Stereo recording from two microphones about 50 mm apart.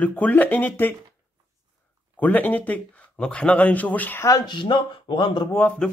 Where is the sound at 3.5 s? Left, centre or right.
Left.